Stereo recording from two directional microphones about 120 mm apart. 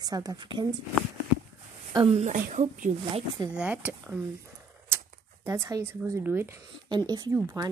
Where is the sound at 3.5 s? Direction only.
10° right (ahead or behind).